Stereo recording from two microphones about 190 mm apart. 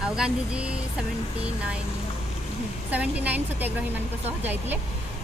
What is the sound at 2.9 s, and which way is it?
Speech, 10° right (ahead or behind).